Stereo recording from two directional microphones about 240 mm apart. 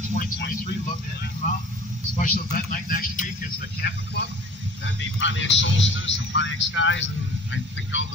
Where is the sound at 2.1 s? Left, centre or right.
Left.